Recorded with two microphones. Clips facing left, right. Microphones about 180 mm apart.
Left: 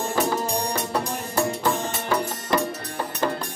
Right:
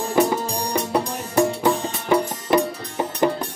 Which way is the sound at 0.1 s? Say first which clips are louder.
Right 6 dB; 15° right (ahead or behind).